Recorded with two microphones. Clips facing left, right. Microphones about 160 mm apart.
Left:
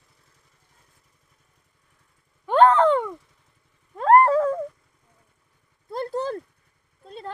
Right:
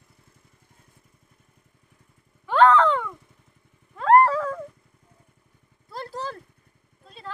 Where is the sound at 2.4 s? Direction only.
45° left (ahead or behind).